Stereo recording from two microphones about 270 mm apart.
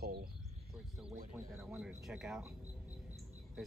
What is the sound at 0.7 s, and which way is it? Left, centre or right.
Speech, centre.